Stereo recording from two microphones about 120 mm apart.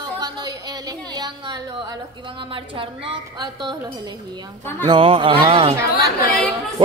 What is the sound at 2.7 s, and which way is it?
A woman's voice, 45° right (ahead or behind).